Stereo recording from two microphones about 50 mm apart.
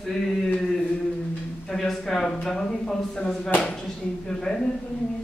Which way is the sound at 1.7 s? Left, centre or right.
Centre.